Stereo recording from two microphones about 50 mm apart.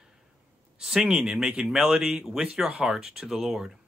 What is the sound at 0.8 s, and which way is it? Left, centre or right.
Speech, centre.